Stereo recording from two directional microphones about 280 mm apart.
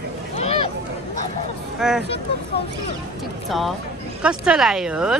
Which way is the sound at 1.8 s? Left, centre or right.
Centre.